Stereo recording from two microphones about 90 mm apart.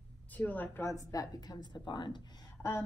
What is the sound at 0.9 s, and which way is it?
A woman's voice, 40° left (ahead or behind).